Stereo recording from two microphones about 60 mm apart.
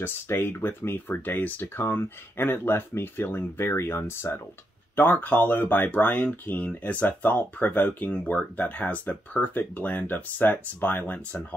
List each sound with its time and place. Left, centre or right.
0.0 s speech: left